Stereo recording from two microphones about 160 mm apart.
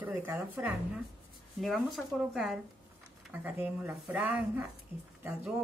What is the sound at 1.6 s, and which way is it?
A woman's voice, centre (ahead or behind).